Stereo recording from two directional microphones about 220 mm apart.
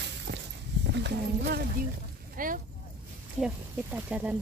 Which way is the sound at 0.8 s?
50° right (ahead or behind).